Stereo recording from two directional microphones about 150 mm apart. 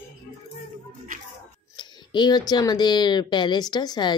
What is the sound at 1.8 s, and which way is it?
Speech, 30° left (ahead or behind).